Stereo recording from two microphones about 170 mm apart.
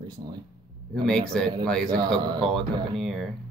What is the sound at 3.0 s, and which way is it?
Speech, centre (ahead or behind).